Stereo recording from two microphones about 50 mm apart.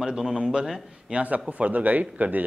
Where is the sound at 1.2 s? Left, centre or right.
Right.